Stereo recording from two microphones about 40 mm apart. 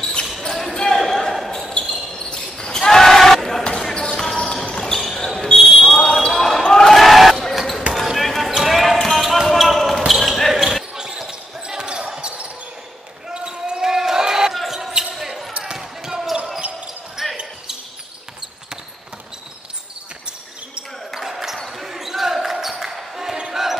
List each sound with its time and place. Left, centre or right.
0.5 s basketball bounce: centre
3.6 s basketball bounce: centre
5.9 s basketball bounce: centre
11.0 s basketball bounce: centre
21.1 s basketball bounce: centre